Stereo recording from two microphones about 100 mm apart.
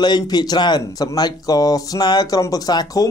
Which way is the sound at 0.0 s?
45° left (ahead or behind).